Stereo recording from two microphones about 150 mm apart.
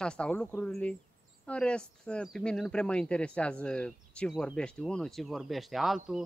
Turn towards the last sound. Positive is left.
turn(degrees=0)  # may be behind; listen again after turning